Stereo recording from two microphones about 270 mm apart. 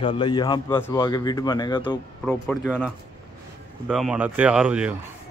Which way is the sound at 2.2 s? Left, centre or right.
Centre.